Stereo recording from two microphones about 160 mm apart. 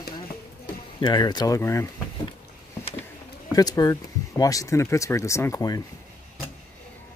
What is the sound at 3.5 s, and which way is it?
Speech, 25° left (ahead or behind).